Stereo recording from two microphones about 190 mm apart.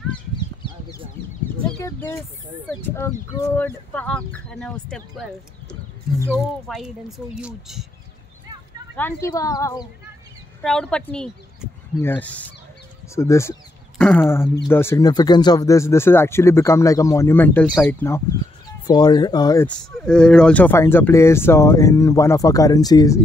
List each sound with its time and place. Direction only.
0.6 s a sound: 20° left (ahead or behind)
1.8 s speech: 15° left (ahead or behind)
3.4 s speech: 10° left (ahead or behind)
8.9 s speech: 10° left (ahead or behind)
10.6 s a woman's voice: 5° left (ahead or behind)
18.9 s speech: 20° left (ahead or behind)
20.1 s speech: 5° left (ahead or behind)